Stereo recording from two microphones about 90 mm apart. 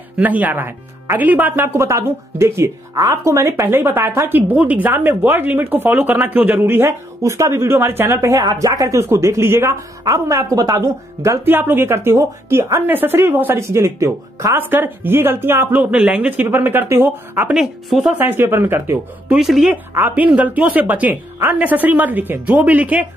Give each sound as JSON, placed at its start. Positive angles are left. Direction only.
{"t": 0.2, "sound": "speech", "side_deg": -20}
{"t": 14.6, "sound": "speech", "side_deg": -25}
{"t": 17.5, "sound": "a woman's voice", "side_deg": -5}
{"t": 18.0, "sound": "speech", "side_deg": -20}
{"t": 19.3, "sound": "a woman's voice", "side_deg": -5}
{"t": 20.2, "sound": "speech", "side_deg": -15}